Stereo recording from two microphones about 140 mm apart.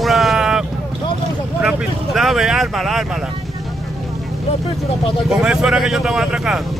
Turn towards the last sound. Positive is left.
turn(degrees=-5)  # may be behind; listen again after turning